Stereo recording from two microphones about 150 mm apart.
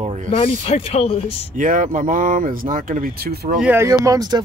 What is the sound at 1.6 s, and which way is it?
Speech, 60° right (ahead or behind).